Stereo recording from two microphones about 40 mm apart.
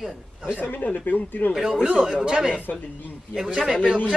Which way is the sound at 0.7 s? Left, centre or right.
Left.